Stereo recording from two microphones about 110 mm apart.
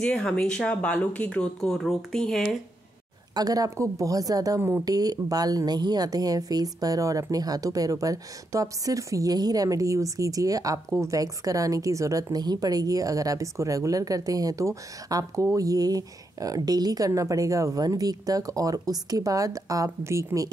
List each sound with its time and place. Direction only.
0.0 s speech: 5° left (ahead or behind)
3.3 s speech: 35° right (ahead or behind)
4.6 s speech: 20° right (ahead or behind)
4.8 s speech: 35° right (ahead or behind)